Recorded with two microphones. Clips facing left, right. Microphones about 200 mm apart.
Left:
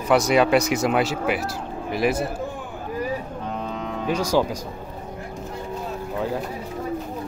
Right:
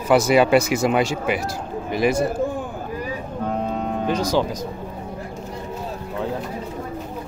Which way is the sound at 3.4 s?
45° right (ahead or behind).